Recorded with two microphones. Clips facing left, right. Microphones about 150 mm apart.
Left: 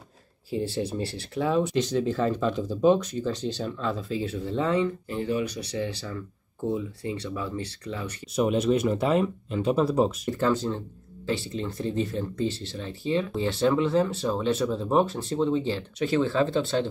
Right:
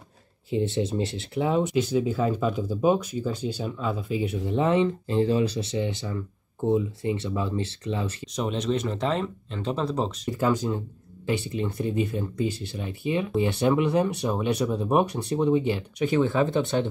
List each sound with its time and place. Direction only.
0.5 s speech: 20° right (ahead or behind)
8.4 s speech: 5° left (ahead or behind)
10.3 s speech: 10° right (ahead or behind)